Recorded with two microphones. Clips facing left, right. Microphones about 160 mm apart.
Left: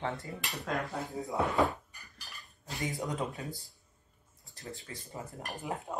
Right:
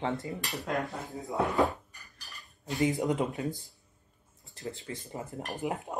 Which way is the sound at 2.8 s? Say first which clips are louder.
Right 7 dB; 20° right (ahead or behind).